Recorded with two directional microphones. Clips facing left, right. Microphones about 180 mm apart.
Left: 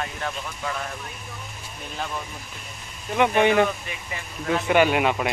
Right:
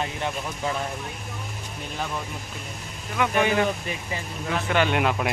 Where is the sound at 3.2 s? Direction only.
25° left (ahead or behind).